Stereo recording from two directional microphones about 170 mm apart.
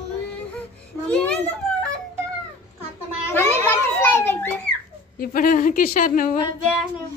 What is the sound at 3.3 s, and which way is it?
Children playing, 15° left (ahead or behind).